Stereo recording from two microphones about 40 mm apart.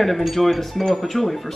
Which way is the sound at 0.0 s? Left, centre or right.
Centre.